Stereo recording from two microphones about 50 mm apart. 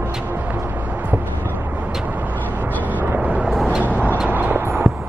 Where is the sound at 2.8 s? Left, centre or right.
Right.